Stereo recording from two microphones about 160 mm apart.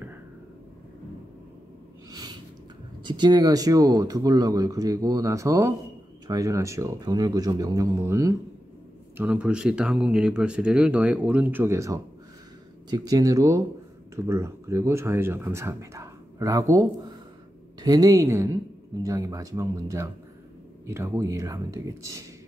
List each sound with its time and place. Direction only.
3.0 s speech: 30° right (ahead or behind)